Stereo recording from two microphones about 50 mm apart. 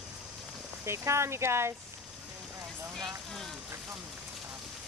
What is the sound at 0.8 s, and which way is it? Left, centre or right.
Speech, right.